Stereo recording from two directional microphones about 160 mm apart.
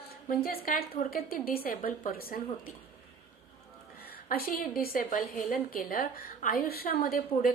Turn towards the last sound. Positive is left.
turn(degrees=65)  # may be behind; listen again after turning